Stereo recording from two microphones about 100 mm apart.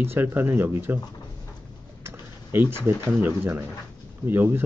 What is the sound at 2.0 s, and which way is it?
Typing, 25° right (ahead or behind).